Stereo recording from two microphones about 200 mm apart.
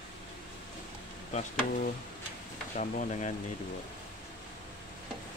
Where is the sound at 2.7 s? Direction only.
40° left (ahead or behind).